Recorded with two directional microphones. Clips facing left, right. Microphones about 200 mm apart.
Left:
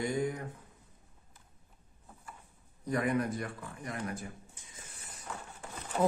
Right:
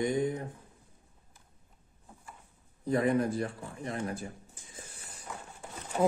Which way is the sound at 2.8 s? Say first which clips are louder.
Right 4 dB; 25° right (ahead or behind).